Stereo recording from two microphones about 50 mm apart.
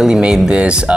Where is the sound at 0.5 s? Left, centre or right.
Right.